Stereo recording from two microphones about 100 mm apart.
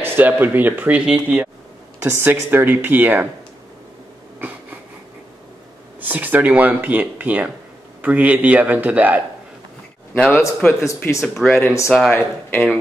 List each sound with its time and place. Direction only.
0.0 s speech: 20° right (ahead or behind)
4.4 s wheeze: 20° right (ahead or behind)
5.9 s speech: 15° right (ahead or behind)
10.1 s speech: 10° left (ahead or behind)
11.1 s speech: 5° left (ahead or behind)
11.6 s speech: 30° left (ahead or behind)
11.9 s speech: 10° left (ahead or behind)